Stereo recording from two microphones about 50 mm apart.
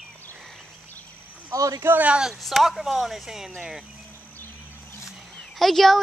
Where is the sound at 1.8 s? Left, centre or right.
Right.